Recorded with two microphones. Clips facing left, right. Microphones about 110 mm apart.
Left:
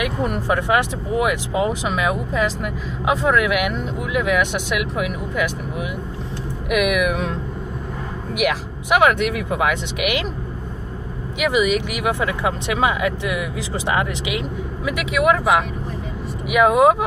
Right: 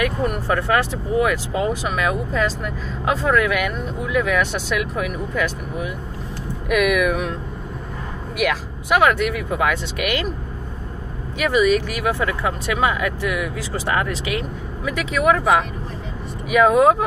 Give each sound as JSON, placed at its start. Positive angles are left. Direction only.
{"t": 0.0, "sound": "speech", "side_deg": 15}
{"t": 8.4, "sound": "speech", "side_deg": 15}
{"t": 11.3, "sound": "speech", "side_deg": 15}
{"t": 16.4, "sound": "speech", "side_deg": 10}